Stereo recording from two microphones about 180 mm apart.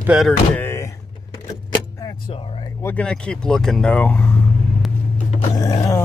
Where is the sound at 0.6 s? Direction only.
15° left (ahead or behind).